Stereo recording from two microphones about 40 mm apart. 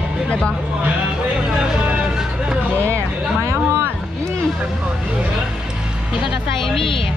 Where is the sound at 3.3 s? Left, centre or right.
Right.